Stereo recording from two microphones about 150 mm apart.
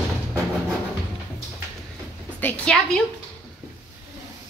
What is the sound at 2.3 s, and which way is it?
Speech, 10° left (ahead or behind).